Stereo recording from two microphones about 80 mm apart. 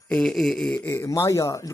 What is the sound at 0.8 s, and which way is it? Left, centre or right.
Speech, left.